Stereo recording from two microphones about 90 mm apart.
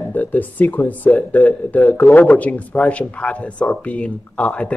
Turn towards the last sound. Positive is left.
turn(degrees=15)  # may be behind; listen again after turning